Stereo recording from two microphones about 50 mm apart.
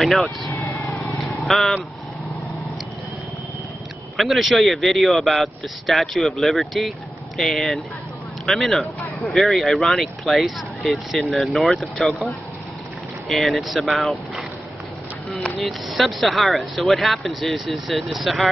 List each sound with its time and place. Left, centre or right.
0.0 s speech: centre
0.5 s vehicle: left
0.9 s vehicle: centre
4.2 s speech: centre
13.3 s speech: centre
15.6 s speech: centre